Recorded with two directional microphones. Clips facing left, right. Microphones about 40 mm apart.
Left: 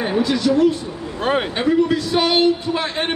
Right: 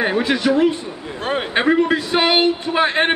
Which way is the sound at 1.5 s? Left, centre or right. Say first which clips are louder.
Right 5 dB; right.